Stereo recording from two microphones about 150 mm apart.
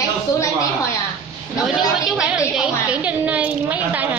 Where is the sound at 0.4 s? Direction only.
20° left (ahead or behind).